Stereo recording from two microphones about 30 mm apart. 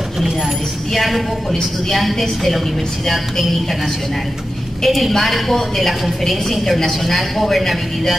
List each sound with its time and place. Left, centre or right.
0.9 s a woman's voice: centre
4.8 s a woman's voice: centre